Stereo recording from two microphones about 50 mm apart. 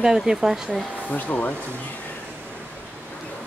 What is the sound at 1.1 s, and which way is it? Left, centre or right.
Speech, left.